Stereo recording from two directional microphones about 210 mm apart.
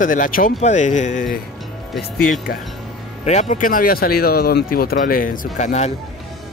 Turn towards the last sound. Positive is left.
turn(degrees=35)  # may be behind; listen again after turning